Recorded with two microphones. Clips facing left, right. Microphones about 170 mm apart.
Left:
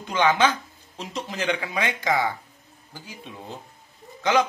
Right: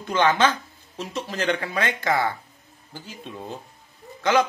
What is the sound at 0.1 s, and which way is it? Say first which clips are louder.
Speech: right 1 dB; 10° left (ahead or behind).